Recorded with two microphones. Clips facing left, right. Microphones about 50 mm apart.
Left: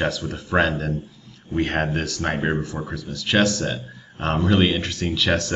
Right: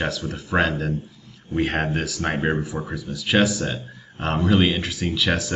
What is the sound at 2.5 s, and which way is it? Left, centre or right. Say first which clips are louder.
Speech: right 1 dB; centre.